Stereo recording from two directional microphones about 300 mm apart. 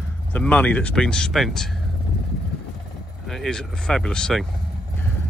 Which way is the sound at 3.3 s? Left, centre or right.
Centre.